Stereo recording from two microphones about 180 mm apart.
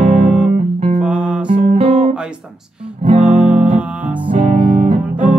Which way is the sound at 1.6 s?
40° right (ahead or behind).